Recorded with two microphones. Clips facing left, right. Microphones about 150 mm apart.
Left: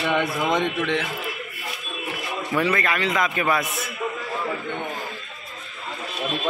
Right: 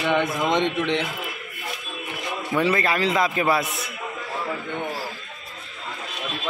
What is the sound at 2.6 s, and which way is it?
A man's voice, 30° right (ahead or behind).